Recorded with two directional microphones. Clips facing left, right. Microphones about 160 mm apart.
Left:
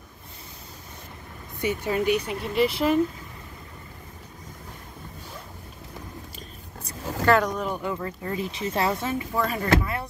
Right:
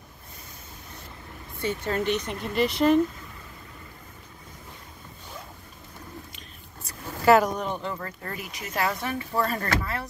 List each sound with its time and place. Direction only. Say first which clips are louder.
1.6 s speech: left 2 dB; 10° left (ahead or behind)
7.2 s speech: right 2 dB; 5° right (ahead or behind); by 10.0 s 15° left (ahead or behind)